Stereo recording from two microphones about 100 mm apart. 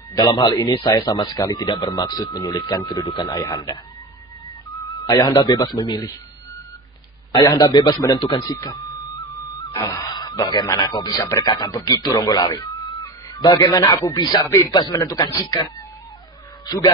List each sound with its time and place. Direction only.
0.1 s a man's voice: 45° left (ahead or behind)
5.0 s a man's voice: 40° left (ahead or behind)
7.4 s a man's voice: 35° left (ahead or behind)
11.4 s speech: 45° left (ahead or behind)
13.0 s music: 40° left (ahead or behind)
13.7 s a man's voice: 35° left (ahead or behind)